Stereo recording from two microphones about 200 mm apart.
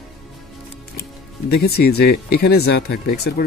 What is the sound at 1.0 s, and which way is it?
Speech, 50° left (ahead or behind).